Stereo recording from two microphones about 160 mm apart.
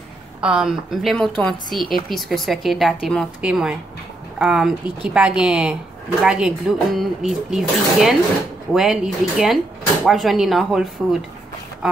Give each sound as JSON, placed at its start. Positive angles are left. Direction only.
{"t": 0.4, "sound": "speech", "side_deg": -5}